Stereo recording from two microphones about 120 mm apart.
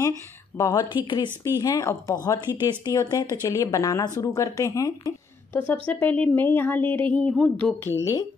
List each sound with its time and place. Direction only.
0.6 s speech: 25° left (ahead or behind)
1.0 s speech: 45° left (ahead or behind)
1.6 s speech: 30° left (ahead or behind)
5.7 s speech: 15° left (ahead or behind)